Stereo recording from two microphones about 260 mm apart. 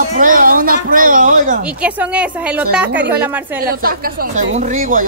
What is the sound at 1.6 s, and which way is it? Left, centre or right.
A woman's voice, centre.